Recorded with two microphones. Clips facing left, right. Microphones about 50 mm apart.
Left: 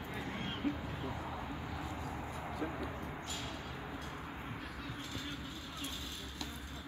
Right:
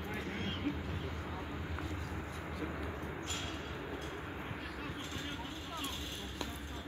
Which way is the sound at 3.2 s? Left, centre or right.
Right.